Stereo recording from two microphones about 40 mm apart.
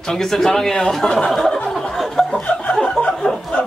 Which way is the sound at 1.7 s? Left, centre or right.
Centre.